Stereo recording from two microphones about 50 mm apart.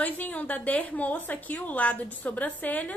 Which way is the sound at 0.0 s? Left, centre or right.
Left.